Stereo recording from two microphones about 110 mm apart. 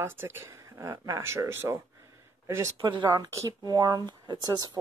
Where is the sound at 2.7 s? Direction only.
45° right (ahead or behind).